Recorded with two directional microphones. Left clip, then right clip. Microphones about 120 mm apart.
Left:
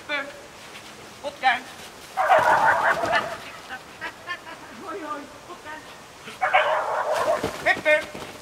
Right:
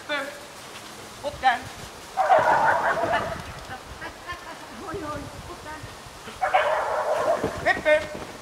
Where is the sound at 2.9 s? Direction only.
25° left (ahead or behind).